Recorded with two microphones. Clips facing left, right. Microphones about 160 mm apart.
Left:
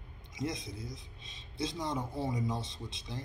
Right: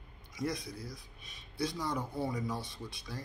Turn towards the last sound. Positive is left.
turn(degrees=20)  # may be behind; listen again after turning